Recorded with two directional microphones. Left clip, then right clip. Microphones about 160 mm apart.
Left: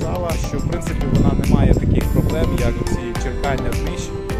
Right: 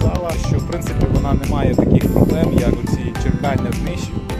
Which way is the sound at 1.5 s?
15° right (ahead or behind).